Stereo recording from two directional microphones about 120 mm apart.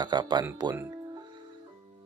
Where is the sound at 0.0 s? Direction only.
40° right (ahead or behind).